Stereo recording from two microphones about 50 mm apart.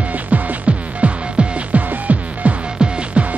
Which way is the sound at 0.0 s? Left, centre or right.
Right.